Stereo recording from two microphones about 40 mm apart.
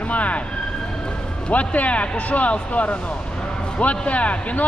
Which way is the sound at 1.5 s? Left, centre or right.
Left.